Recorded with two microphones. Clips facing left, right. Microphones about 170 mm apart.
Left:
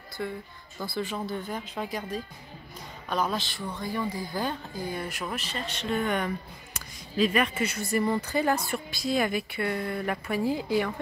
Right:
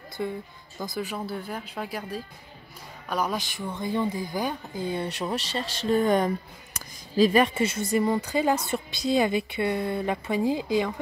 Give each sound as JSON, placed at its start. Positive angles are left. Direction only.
{"t": 0.2, "sound": "a woman's voice", "side_deg": -15}